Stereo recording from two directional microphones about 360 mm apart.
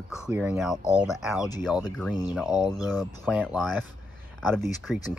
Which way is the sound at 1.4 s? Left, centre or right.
Centre.